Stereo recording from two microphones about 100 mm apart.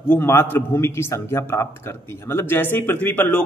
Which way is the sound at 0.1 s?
25° left (ahead or behind).